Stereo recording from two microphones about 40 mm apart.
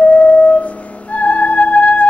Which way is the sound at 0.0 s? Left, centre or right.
Left.